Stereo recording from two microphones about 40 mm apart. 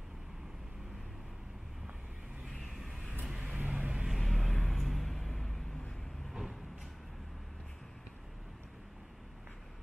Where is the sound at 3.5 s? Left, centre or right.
Right.